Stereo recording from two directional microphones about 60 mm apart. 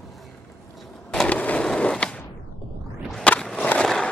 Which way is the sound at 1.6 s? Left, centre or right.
Centre.